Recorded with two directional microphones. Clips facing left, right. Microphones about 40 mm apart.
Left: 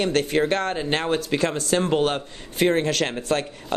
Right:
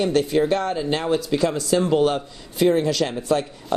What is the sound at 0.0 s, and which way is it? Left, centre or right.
A man's voice, left.